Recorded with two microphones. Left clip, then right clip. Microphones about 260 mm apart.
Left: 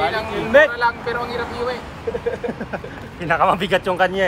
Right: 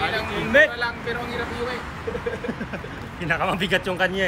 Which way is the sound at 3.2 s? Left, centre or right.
Left.